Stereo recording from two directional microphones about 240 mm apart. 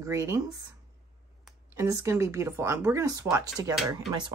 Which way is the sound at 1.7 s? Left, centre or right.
Centre.